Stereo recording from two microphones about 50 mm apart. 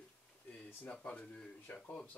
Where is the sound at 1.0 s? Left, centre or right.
Left.